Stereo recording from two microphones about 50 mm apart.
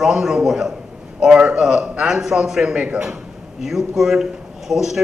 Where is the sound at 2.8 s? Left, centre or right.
Right.